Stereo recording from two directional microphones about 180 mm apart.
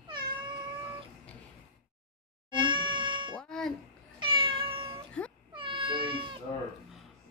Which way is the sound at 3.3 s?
5° left (ahead or behind).